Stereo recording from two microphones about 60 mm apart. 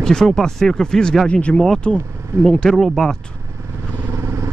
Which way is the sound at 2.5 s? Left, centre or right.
Centre.